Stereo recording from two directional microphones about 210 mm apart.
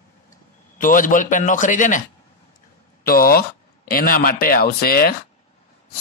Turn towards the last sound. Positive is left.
turn(degrees=45)  # may be behind; listen again after turning